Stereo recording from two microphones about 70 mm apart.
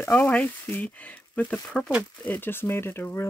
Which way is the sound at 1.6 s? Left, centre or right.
Centre.